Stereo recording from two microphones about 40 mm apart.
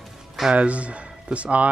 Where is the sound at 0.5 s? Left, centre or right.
Right.